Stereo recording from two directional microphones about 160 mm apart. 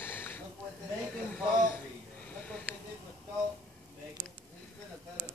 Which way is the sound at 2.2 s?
10° left (ahead or behind).